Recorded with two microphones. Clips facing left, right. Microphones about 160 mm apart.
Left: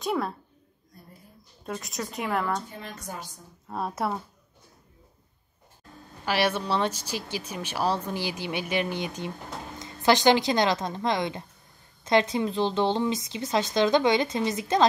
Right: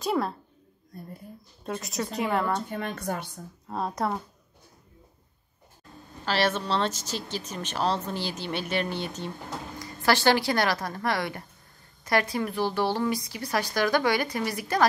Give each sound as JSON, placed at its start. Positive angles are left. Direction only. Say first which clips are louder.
{"t": 0.0, "sound": "speech", "louder": "right 1 dB", "side_deg": 0}
{"t": 1.7, "sound": "speech", "louder": "right 2 dB", "side_deg": 0}
{"t": 2.7, "sound": "speech", "louder": "right 7 dB", "side_deg": -60}
{"t": 3.6, "sound": "speech", "louder": "even", "side_deg": 5}
{"t": 6.2, "sound": "a woman's voice", "louder": "even", "side_deg": 10}